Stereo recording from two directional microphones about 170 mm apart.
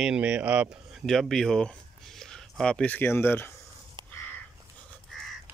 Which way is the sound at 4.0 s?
25° right (ahead or behind).